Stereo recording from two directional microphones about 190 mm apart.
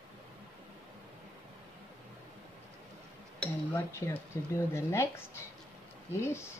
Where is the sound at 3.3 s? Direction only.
10° left (ahead or behind).